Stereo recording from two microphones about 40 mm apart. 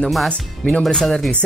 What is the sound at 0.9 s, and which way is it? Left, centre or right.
Speech, centre.